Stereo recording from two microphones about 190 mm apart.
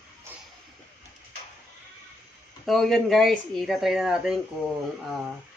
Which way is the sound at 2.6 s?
Centre (ahead or behind).